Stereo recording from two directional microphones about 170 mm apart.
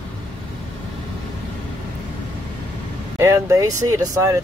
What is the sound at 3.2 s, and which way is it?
Speech, 15° right (ahead or behind).